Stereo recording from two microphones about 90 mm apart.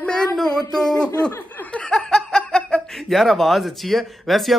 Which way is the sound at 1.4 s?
20° left (ahead or behind).